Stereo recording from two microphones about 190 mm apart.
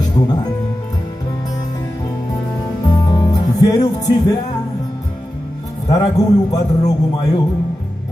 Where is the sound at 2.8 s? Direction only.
20° left (ahead or behind).